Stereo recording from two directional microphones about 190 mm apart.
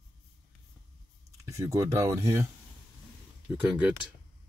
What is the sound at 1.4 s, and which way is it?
Speech, 15° right (ahead or behind).